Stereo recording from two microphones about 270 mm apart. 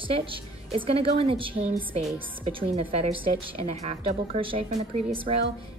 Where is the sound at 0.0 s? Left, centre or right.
Centre.